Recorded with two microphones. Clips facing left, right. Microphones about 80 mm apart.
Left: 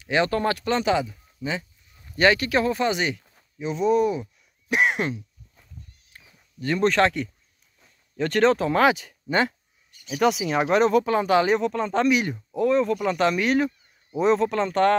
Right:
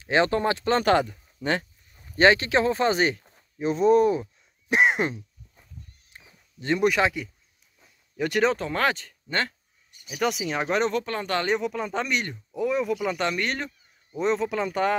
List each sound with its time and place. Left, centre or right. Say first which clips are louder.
0.0 s speech: even; right
0.7 s speech: right 4 dB; right
1.4 s speech: right 3 dB; right
2.0 s speech: right 1 dB; right
4.2 s speech: left 1 dB; right
6.1 s a sound: left 3 dB; right
6.8 s speech: left 3 dB; centre
10.0 s speech: left 5 dB; centre
12.5 s speech: left 4 dB; centre
13.2 s speech: left 6 dB; centre